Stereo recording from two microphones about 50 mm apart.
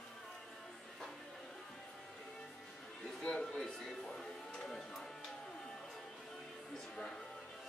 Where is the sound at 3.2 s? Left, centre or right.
Centre.